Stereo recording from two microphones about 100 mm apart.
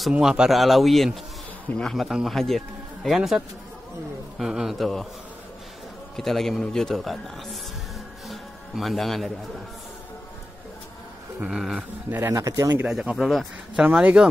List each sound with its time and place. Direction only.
0.1 s speech: 5° right (ahead or behind)
6.1 s speech: 5° left (ahead or behind)
8.3 s music: centre (ahead or behind)
11.3 s speech: 5° right (ahead or behind)
12.1 s speech: 25° right (ahead or behind)
12.8 s speech: 10° right (ahead or behind)
14.2 s speech: 10° right (ahead or behind)